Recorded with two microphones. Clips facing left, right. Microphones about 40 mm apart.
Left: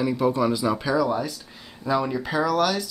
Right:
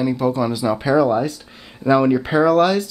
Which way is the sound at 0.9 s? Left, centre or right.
Right.